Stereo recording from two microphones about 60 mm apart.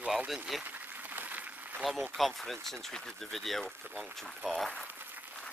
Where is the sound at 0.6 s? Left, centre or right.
Right.